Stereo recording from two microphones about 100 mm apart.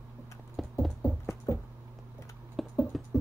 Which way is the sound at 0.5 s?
Centre (ahead or behind).